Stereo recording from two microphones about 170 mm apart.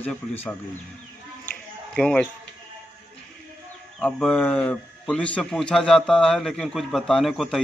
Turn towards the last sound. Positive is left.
turn(degrees=0)  # may be behind; listen again after turning